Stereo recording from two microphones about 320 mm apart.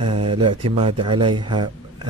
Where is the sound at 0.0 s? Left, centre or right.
Centre.